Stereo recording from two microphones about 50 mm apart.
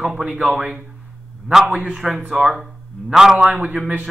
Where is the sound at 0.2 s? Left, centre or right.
Right.